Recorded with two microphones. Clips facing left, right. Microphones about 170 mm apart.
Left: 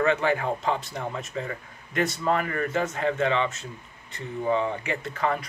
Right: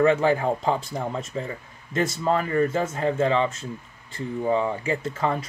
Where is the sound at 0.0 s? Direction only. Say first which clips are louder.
Right 4 dB; 35° right (ahead or behind).